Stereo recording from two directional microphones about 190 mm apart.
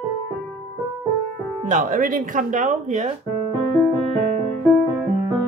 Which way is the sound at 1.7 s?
45° right (ahead or behind).